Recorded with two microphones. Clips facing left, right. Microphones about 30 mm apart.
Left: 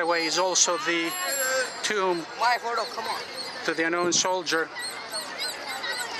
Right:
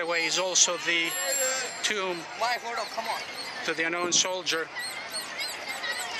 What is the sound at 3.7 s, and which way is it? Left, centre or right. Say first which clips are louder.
Speech: left 3 dB; centre.